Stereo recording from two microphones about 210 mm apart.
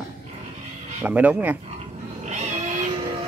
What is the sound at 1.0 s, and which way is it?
Speech, 5° right (ahead or behind).